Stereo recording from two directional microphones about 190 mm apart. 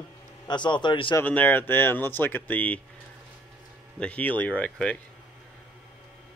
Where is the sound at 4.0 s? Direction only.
5° left (ahead or behind).